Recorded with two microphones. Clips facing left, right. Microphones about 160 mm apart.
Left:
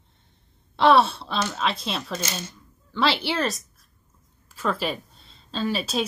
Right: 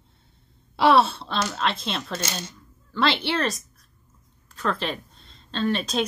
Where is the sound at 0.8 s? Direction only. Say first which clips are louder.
Even; centre (ahead or behind).